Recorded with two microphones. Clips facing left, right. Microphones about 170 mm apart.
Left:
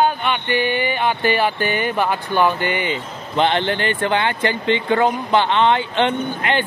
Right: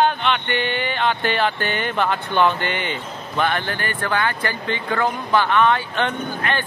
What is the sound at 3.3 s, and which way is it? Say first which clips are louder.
Speech: left 5 dB; 20° left (ahead or behind).